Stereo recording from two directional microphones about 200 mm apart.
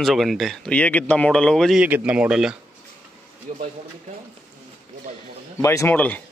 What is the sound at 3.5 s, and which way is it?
Speech, 40° right (ahead or behind).